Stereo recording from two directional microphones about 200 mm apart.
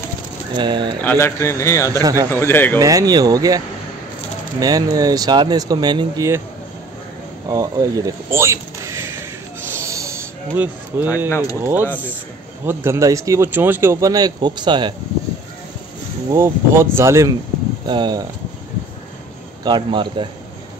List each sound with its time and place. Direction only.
0.6 s speech: 20° right (ahead or behind)
1.0 s a man's voice: 10° left (ahead or behind)
2.0 s speech: 20° right (ahead or behind)
2.3 s a man's voice: 10° left (ahead or behind)
2.8 s speech: 15° right (ahead or behind)
7.4 s speech: 15° right (ahead or behind)
9.8 s a sound: 15° right (ahead or behind)
11.2 s a man's voice: 15° left (ahead or behind)
12.6 s speech: 15° right (ahead or behind)
16.3 s speech: 15° right (ahead or behind)
19.6 s speech: 20° right (ahead or behind)